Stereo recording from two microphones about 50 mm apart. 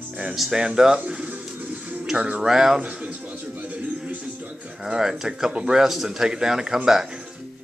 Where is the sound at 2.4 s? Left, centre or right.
Centre.